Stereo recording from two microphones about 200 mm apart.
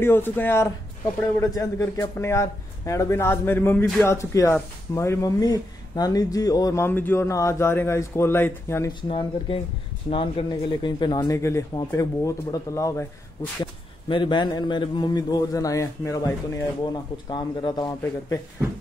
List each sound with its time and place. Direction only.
0.0 s speech: 10° left (ahead or behind)
4.1 s speech: 15° left (ahead or behind)
9.1 s a man's voice: 25° left (ahead or behind)